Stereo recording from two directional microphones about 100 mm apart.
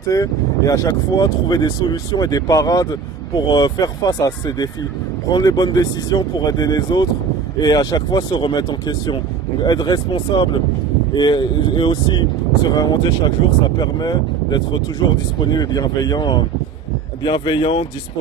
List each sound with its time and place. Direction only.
0.0 s speech: 35° left (ahead or behind); by 17.8 s 60° left (ahead or behind)